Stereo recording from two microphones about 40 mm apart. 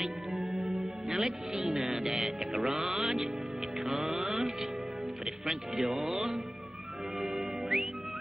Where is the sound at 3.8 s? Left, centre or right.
Centre.